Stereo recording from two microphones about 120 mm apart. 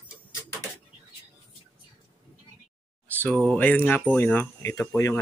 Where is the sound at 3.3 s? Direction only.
10° left (ahead or behind).